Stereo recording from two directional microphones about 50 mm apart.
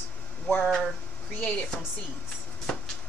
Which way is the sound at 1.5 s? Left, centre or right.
Left.